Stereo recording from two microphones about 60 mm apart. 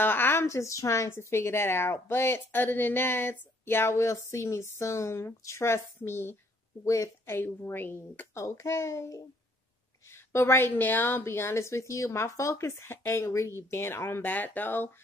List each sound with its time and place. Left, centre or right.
0.0 s a sound: left
0.4 s a woman's voice: left
6.8 s a child's voice: left
7.3 s speech: left
8.4 s a child's voice: left
10.1 s a woman's voice: left
10.7 s a woman's voice: left
14.2 s speech: left